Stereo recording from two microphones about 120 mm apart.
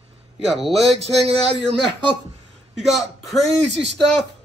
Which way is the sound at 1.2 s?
55° right (ahead or behind).